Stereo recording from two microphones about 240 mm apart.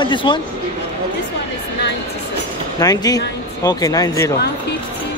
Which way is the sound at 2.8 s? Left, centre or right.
Centre.